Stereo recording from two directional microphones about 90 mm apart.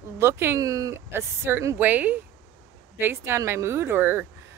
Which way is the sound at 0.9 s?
30° right (ahead or behind).